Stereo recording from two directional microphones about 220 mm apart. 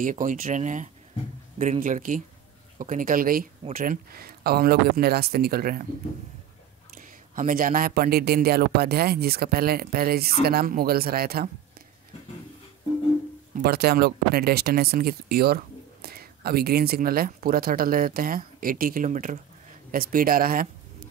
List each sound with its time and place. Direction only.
0.0 s speech: 35° right (ahead or behind)
7.0 s speech: 40° right (ahead or behind)
13.6 s speech: 45° right (ahead or behind)